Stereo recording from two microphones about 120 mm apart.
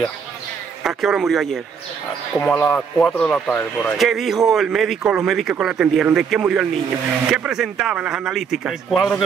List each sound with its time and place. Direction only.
0.8 s speech: centre (ahead or behind)
2.5 s speech: 20° left (ahead or behind)
3.0 s speech: 5° left (ahead or behind)
4.0 s speech: centre (ahead or behind)